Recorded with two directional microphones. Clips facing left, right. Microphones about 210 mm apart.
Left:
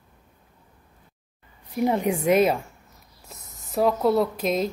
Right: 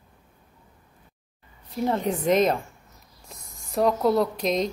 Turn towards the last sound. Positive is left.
turn(degrees=5)  # may be behind; listen again after turning